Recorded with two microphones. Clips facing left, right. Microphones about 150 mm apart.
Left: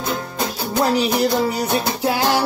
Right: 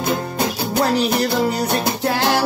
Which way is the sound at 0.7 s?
Centre (ahead or behind).